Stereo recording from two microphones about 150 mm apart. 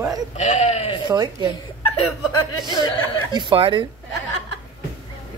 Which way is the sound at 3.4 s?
35° right (ahead or behind).